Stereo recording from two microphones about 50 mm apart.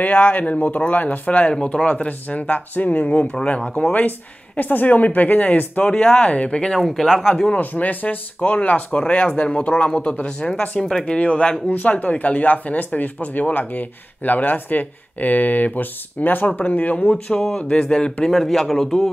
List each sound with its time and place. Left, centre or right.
0.0 s speech: left
4.6 s speech: left; by 6.8 s centre
6.8 s speech: centre
7.5 s a man's voice: left; by 11.1 s centre
11.1 s speech: left
11.6 s speech: left
17.1 s speech: centre
18.3 s a man's voice: centre